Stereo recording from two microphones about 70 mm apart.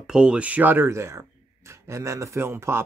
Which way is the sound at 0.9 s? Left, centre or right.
Right.